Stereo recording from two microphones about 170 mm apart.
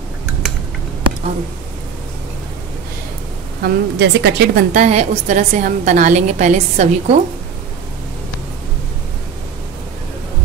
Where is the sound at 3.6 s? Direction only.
85° right.